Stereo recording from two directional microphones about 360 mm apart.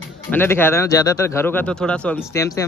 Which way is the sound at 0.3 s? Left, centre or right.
Centre.